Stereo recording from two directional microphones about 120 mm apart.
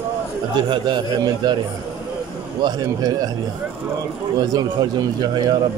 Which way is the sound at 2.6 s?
30° right (ahead or behind).